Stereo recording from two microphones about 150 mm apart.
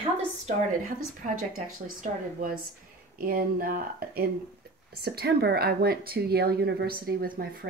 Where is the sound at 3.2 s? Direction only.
80° right.